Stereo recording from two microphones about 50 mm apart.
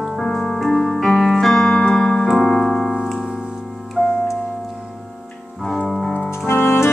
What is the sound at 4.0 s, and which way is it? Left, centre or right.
Keyboard, right.